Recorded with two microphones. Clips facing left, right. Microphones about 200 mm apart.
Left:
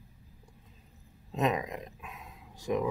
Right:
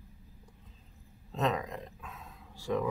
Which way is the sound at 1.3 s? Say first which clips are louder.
Left 2 dB; 15° left (ahead or behind).